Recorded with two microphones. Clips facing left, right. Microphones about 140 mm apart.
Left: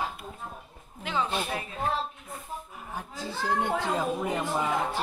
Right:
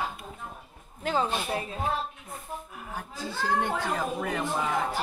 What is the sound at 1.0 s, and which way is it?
Speech, 40° right (ahead or behind).